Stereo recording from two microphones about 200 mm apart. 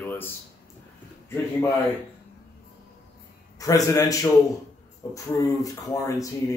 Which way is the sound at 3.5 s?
15° left (ahead or behind).